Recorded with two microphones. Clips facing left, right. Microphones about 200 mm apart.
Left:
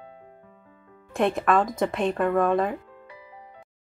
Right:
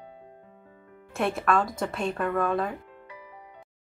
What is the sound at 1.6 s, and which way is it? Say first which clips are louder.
Speech: left 4 dB; 20° left (ahead or behind).